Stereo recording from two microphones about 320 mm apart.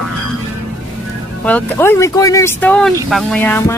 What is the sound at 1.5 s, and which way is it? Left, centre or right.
Speech, centre.